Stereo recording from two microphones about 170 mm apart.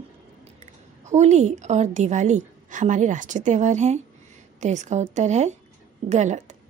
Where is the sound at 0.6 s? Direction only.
40° right (ahead or behind).